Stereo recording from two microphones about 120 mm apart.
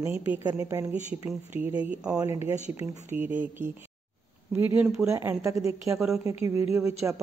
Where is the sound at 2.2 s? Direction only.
25° right (ahead or behind).